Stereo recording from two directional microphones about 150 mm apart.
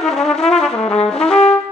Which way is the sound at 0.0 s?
Centre (ahead or behind).